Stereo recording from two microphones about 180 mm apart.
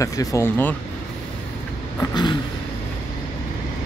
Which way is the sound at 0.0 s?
20° left (ahead or behind).